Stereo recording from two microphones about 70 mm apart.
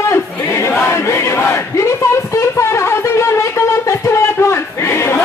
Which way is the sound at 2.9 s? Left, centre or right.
Left.